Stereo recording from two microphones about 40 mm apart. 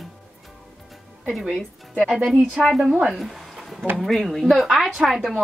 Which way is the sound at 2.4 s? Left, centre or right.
Right.